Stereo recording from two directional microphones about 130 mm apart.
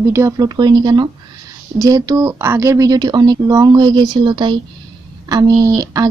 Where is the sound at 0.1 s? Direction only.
25° right (ahead or behind).